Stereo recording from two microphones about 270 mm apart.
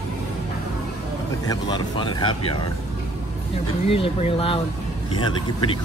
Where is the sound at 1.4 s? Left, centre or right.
Centre.